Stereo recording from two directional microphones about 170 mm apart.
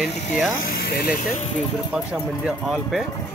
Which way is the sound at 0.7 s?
70° left (ahead or behind).